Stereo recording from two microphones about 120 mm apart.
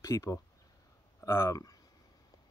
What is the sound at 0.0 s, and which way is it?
Speech, 25° left (ahead or behind).